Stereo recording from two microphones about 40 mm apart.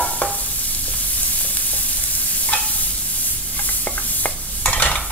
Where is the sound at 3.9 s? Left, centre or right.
Left.